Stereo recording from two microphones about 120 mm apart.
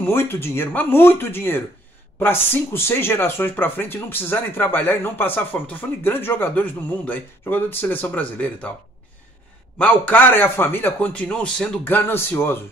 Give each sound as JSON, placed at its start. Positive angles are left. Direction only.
{"t": 0.0, "sound": "speech", "side_deg": 20}
{"t": 9.8, "sound": "speech", "side_deg": 10}